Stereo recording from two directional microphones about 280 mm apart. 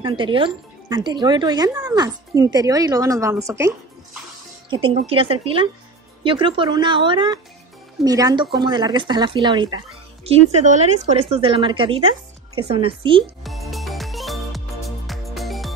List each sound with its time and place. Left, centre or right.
0.0 s a woman's voice: centre
13.4 s music: centre